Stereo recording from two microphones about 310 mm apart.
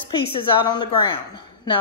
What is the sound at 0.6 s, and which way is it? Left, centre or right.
Speech, centre.